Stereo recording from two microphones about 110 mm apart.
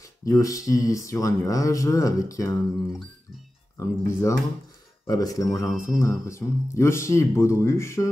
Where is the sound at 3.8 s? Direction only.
25° left (ahead or behind).